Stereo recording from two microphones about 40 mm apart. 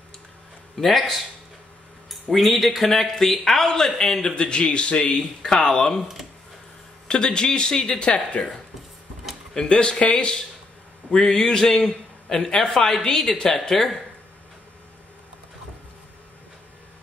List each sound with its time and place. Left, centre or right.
0.7 s a man's voice: centre
2.3 s a man's voice: centre
4.4 s speech: left
5.4 s a man's voice: centre
7.1 s speech: left
8.1 s speech: left
9.5 s a man's voice: left